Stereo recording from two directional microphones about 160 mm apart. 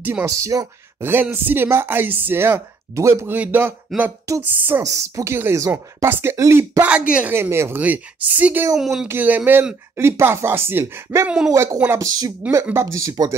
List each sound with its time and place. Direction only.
0.0 s speech: 15° right (ahead or behind)
6.8 s speech: 5° right (ahead or behind)
9.0 s speech: 10° right (ahead or behind)